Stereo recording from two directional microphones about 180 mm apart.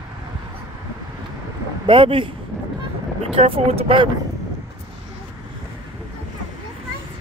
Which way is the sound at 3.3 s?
30° right (ahead or behind).